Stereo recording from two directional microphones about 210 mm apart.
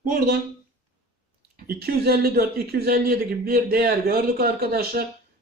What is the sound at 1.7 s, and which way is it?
A man's voice, 45° right (ahead or behind).